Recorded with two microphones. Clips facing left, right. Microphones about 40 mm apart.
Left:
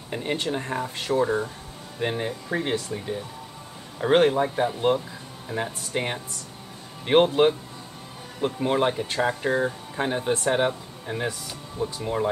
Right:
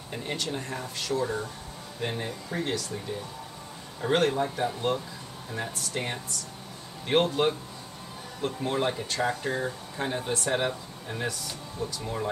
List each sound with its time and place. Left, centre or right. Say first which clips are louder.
0.1 s speech: left 5 dB; left
4.0 s speech: left 5 dB; left